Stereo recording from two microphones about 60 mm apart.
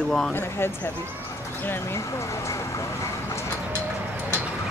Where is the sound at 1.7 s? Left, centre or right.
Left.